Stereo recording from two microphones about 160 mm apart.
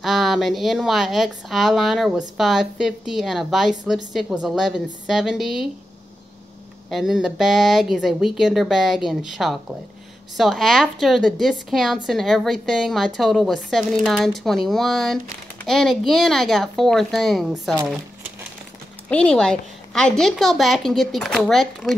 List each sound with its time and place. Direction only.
0.0 s speech: centre (ahead or behind)
6.9 s speech: centre (ahead or behind)
19.0 s speech: 5° left (ahead or behind)